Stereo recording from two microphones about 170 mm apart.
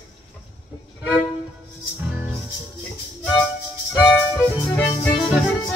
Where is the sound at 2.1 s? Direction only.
15° right (ahead or behind).